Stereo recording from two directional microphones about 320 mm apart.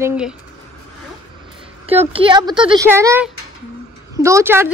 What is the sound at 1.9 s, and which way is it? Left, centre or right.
A woman's voice, centre.